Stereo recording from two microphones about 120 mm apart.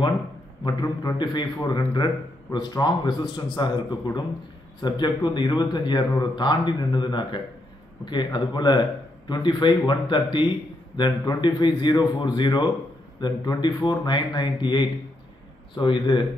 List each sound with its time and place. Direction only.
0.7 s a man's voice: 35° left (ahead or behind)